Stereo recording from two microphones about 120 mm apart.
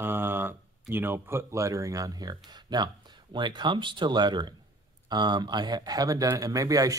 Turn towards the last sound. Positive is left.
turn(degrees=-30)  # may be behind; listen again after turning